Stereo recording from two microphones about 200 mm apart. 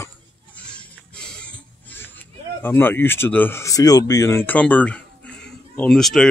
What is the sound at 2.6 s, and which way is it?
Speech, 10° left (ahead or behind).